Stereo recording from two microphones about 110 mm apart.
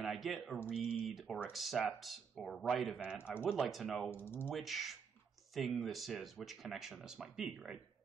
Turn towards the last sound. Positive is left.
turn(degrees=-5)  # may be behind; listen again after turning